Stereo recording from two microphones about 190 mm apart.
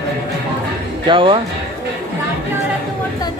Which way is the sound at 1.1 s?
25° right (ahead or behind).